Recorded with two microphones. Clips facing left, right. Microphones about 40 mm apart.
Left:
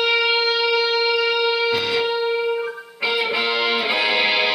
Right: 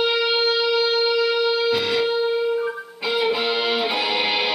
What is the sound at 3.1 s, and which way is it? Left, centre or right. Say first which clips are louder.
Music: even; left.